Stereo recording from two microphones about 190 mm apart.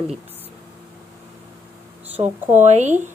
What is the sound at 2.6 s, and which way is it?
Speech, 40° right (ahead or behind).